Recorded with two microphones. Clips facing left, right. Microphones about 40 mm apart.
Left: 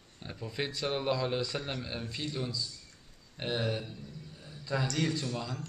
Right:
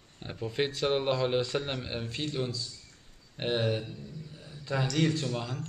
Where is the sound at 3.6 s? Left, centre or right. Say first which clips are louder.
Right 4 dB; centre.